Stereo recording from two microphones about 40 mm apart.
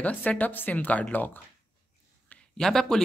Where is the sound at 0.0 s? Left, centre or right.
Left.